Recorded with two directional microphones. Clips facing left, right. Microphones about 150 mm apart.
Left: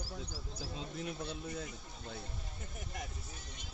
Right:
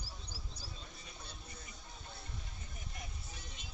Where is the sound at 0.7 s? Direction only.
80° left.